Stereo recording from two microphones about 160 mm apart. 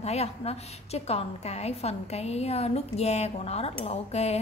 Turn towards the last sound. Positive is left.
turn(degrees=40)  # may be behind; listen again after turning